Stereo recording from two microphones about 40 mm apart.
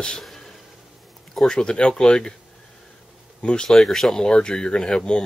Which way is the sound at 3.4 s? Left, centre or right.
Left.